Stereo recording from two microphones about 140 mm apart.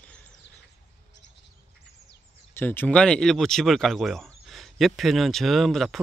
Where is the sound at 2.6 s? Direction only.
15° left (ahead or behind).